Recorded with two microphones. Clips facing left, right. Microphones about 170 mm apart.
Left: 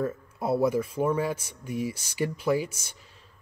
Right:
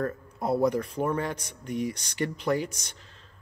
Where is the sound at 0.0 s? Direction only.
5° left (ahead or behind).